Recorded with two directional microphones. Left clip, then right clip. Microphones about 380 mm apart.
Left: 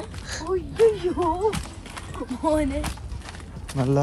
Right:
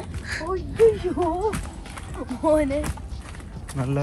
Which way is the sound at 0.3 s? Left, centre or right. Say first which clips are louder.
Even; centre.